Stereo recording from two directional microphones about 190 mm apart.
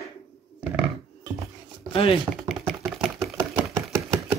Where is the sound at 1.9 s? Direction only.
30° left (ahead or behind).